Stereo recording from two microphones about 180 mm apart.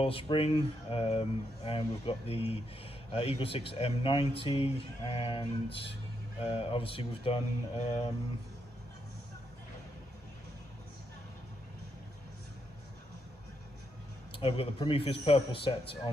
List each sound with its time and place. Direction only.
0.0 s speech: 30° left (ahead or behind)
14.4 s a man's voice: 30° left (ahead or behind)